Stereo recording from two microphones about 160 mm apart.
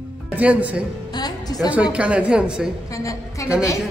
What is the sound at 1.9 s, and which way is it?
Speech, 5° right (ahead or behind).